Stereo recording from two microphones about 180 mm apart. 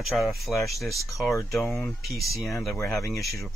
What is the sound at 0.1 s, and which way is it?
Speech, centre (ahead or behind).